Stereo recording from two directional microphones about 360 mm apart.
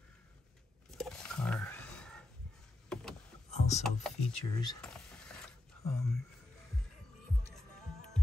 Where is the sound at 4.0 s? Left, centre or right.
Centre.